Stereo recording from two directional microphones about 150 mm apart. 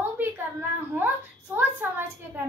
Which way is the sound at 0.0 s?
15° right (ahead or behind).